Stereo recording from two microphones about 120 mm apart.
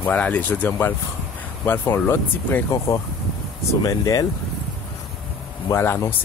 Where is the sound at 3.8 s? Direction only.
30° left (ahead or behind).